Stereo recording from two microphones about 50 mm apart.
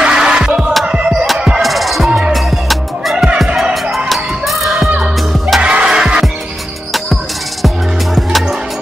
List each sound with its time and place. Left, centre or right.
0.0 s music: centre
1.6 s music: centre
4.1 s a sound: centre
5.6 s music: right
7.6 s music: centre